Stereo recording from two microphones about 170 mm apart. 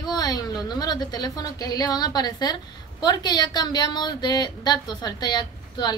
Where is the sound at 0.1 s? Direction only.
25° left (ahead or behind).